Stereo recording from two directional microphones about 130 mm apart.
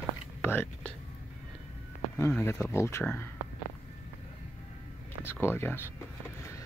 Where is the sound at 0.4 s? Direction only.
15° left (ahead or behind).